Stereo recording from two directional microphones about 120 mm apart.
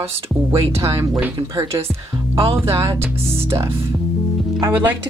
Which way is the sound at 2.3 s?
50° right (ahead or behind).